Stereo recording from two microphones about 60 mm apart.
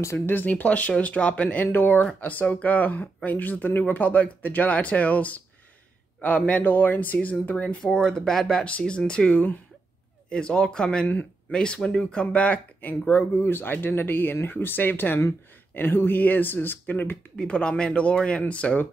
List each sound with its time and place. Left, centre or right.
0.1 s speech: left
17.4 s speech: centre